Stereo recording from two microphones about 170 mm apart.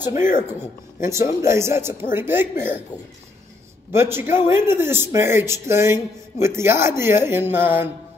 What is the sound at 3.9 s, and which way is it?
Speech, 15° right (ahead or behind).